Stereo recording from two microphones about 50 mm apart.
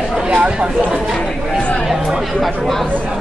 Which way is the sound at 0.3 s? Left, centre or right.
Right.